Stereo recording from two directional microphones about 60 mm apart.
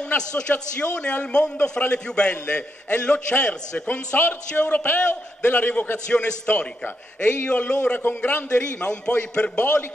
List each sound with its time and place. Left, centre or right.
0.3 s a man's voice: centre
8.0 s a man's voice: left
8.5 s a man's voice: centre